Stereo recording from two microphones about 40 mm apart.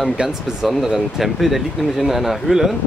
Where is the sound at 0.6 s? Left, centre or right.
Centre.